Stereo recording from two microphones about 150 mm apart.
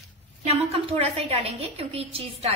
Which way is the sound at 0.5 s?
40° right (ahead or behind).